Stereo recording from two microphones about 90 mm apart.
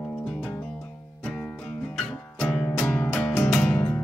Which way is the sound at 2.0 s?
10° left (ahead or behind).